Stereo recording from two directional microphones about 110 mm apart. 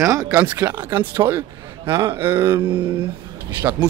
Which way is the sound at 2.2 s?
20° right (ahead or behind).